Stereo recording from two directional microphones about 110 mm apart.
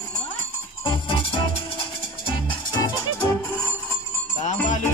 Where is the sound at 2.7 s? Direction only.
40° left (ahead or behind).